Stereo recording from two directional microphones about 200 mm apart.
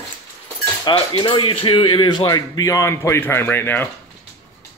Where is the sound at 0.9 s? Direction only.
20° left (ahead or behind).